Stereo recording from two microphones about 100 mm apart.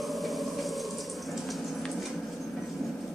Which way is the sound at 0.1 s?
Centre (ahead or behind).